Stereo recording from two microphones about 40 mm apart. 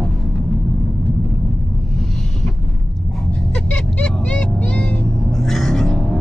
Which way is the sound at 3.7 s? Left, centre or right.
Left.